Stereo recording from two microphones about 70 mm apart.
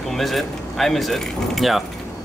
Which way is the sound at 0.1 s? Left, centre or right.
Centre.